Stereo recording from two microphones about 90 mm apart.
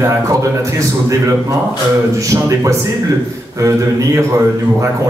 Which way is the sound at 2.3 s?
35° right (ahead or behind).